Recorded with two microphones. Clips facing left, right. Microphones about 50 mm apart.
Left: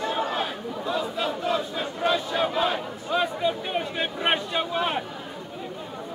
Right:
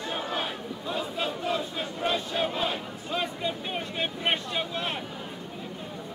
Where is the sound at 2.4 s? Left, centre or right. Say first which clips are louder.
Left 5 dB; centre.